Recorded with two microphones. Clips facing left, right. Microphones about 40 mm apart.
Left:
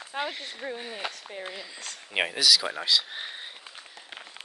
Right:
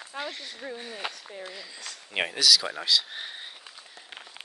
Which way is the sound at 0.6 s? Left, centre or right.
Left.